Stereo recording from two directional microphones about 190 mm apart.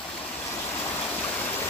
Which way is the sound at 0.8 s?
10° left (ahead or behind).